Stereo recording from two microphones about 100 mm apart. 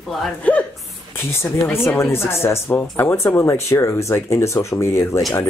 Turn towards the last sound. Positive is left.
turn(degrees=30)  # may be behind; listen again after turning